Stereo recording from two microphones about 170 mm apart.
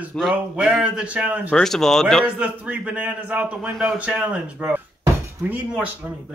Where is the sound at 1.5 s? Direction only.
Centre (ahead or behind).